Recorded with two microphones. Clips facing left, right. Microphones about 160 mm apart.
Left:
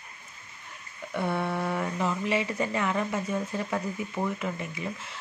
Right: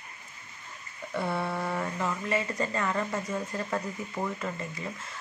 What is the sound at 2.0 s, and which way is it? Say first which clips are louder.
Speech: left 3 dB; 20° left (ahead or behind).